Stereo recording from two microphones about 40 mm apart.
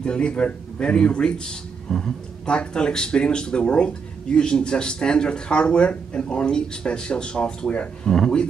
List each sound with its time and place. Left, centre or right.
0.0 s speech: left
1.9 s speech: centre
2.4 s speech: left